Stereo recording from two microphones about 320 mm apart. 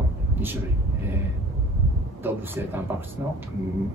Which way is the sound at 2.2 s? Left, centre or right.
Centre.